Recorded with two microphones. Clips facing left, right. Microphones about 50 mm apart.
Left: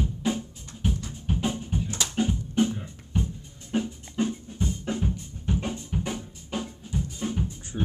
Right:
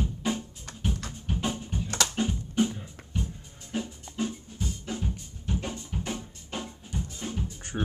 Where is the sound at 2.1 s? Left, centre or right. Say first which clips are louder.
Left 5 dB; centre.